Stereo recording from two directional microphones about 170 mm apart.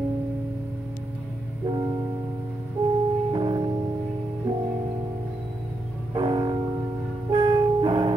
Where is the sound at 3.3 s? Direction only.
30° right (ahead or behind).